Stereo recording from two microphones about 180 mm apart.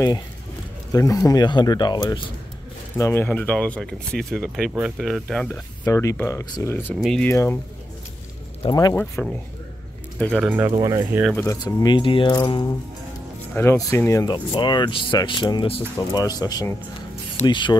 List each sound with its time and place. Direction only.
0.9 s speech: 20° left (ahead or behind)
3.0 s speech: 10° left (ahead or behind)
5.9 s speech: 15° left (ahead or behind)
6.9 s speech: centre (ahead or behind)
8.6 s speech: 20° left (ahead or behind)
9.2 s speech: 10° left (ahead or behind)
10.7 s speech: 20° right (ahead or behind)
11.3 s speech: 20° left (ahead or behind)